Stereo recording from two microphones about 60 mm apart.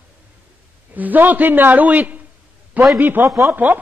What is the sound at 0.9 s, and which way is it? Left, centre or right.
A man's voice, right.